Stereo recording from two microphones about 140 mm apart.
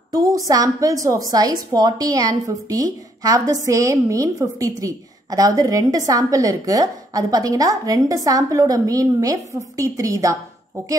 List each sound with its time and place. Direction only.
0.1 s a woman's voice: 25° right (ahead or behind)